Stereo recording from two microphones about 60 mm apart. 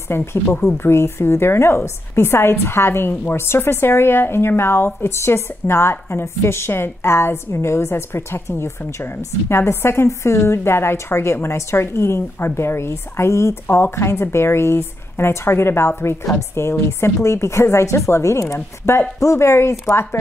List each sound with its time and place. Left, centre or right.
0.1 s a woman's voice: left